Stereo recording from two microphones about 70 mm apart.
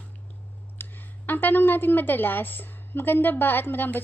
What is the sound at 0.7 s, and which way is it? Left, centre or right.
A woman's voice, left.